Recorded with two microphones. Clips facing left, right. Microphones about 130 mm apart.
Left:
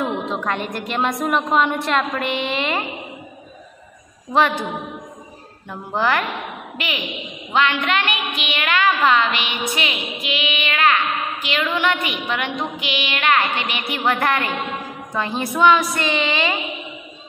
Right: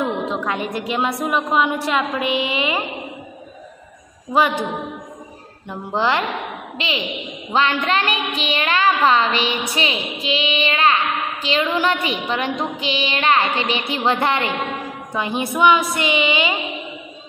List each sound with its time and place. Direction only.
0.0 s a woman's voice: centre (ahead or behind)
4.3 s child singing: 10° right (ahead or behind)
5.9 s a woman's voice: 25° right (ahead or behind)
7.5 s a child's voice: 35° right (ahead or behind); by 15.5 s 20° right (ahead or behind)
15.6 s child singing: 20° right (ahead or behind)